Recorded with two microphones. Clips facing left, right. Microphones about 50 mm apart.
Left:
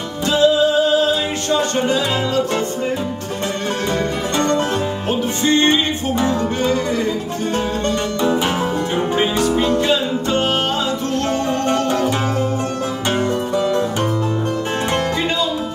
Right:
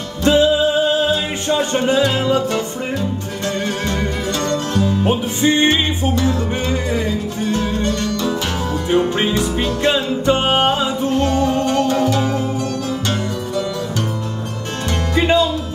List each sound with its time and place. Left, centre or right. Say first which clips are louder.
0.2 s music: right 1 dB; right
3.9 s music: left 2 dB; left
5.0 s music: right 2 dB; centre
6.7 s music: left 2 dB; centre
7.5 s music: left 1 dB; left
9.8 s music: right 2 dB; centre
15.1 s music: right 5 dB; centre